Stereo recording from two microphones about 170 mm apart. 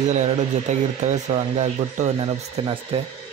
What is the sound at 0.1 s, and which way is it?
Speech, 45° right (ahead or behind).